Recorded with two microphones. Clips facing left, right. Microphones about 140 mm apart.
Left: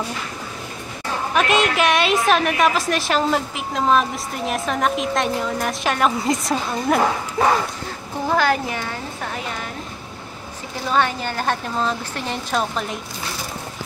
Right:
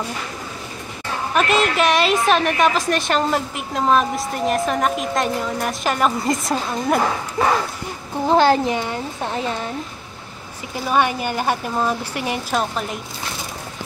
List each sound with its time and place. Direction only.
1.3 s a woman's voice: centre (ahead or behind)
8.3 s a child's voice: 25° right (ahead or behind)
10.9 s speech: 10° right (ahead or behind)